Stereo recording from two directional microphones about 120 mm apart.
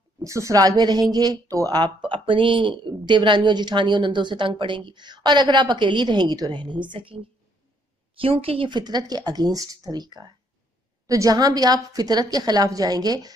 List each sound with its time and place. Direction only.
0.2 s speech: 25° right (ahead or behind); by 7.2 s 45° right (ahead or behind)
8.2 s speech: 50° right (ahead or behind); by 13.3 s 35° right (ahead or behind)